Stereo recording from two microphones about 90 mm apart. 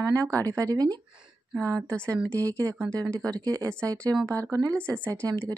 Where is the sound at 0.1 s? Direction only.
35° right (ahead or behind).